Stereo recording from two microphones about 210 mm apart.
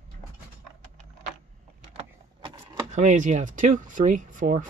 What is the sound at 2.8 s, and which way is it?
Speech, 35° right (ahead or behind).